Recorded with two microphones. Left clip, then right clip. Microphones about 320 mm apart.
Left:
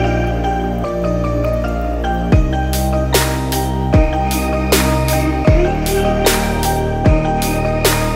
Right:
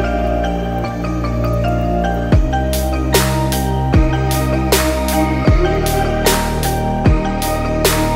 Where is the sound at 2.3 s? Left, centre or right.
Centre.